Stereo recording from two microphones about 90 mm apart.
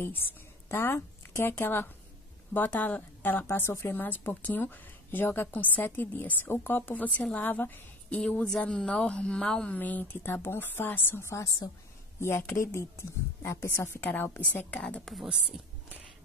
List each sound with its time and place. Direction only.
0.0 s a woman's voice: 25° left (ahead or behind)
8.2 s a woman's voice: 10° left (ahead or behind)